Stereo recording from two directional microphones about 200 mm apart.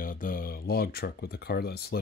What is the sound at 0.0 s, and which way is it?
Speech, 45° left (ahead or behind).